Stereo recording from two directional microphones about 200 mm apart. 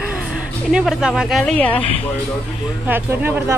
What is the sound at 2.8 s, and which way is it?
Speech, 10° right (ahead or behind).